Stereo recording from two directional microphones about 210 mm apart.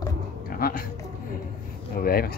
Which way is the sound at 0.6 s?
45° left (ahead or behind).